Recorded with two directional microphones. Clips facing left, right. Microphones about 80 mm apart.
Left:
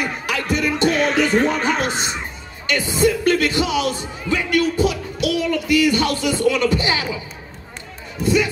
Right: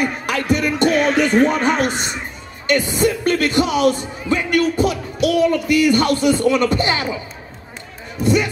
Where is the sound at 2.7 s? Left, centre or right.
Right.